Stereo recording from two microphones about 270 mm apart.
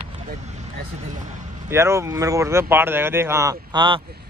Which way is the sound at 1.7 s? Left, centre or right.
Centre.